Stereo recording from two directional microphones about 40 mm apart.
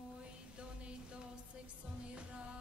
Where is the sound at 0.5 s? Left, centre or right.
Right.